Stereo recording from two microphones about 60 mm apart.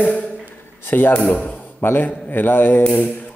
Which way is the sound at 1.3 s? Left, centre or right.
Left.